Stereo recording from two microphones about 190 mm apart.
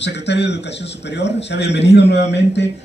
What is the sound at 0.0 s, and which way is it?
A man's voice, 65° left (ahead or behind).